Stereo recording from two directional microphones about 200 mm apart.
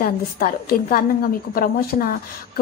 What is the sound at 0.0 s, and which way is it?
Speech, 45° left (ahead or behind).